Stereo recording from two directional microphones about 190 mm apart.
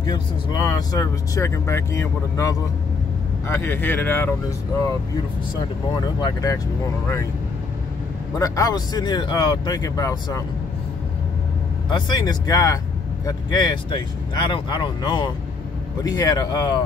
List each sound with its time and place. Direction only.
0.0 s speech: 20° left (ahead or behind)
6.2 s speech: 15° left (ahead or behind)
8.4 s speech: 20° left (ahead or behind)
11.9 s speech: 20° left (ahead or behind)